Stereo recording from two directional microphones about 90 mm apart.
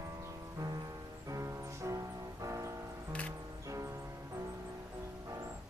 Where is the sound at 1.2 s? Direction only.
35° right (ahead or behind).